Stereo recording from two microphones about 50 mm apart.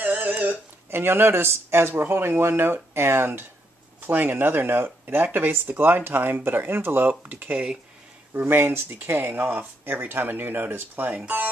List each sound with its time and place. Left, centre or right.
0.0 s a sound: right
0.8 s speech: right
4.0 s speech: right
7.1 s speech: right
7.5 s speech: right
8.3 s speech: right